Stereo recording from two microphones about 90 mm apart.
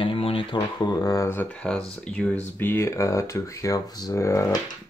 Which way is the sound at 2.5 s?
30° left (ahead or behind).